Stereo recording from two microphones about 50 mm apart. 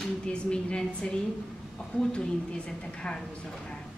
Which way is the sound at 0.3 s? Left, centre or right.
Left.